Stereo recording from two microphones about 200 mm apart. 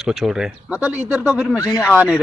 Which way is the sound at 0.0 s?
Centre (ahead or behind).